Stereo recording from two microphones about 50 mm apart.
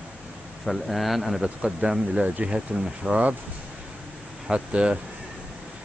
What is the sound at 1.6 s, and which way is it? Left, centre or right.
Speech, right.